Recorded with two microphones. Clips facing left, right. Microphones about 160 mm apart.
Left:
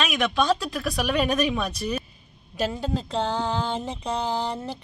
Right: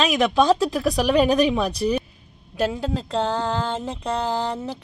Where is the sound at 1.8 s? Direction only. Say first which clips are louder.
Right 9 dB; 25° right (ahead or behind).